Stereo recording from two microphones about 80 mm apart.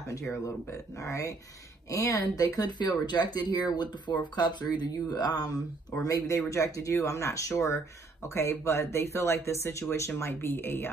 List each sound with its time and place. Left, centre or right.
0.1 s speech: left
6.0 s speech: left